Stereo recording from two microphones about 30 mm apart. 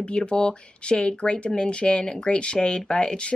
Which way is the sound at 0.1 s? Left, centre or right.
Left.